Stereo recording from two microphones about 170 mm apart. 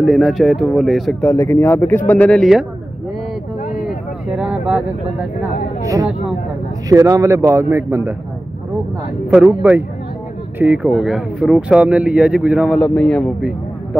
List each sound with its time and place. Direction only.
0.0 s speech: centre (ahead or behind)
1.2 s speech: 15° left (ahead or behind)
4.4 s a sound: 5° right (ahead or behind)
6.9 s a man's voice: 20° right (ahead or behind)
9.3 s speech: 10° right (ahead or behind); by 13.3 s 5° left (ahead or behind)